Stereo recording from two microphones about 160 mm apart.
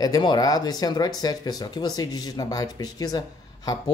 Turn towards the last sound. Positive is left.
turn(degrees=25)  # may be behind; listen again after turning